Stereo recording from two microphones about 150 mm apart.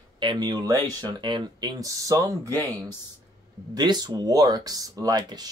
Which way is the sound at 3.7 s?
30° right (ahead or behind).